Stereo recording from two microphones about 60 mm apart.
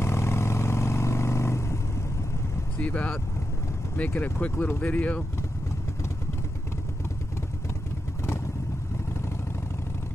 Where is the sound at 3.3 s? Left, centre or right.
Left.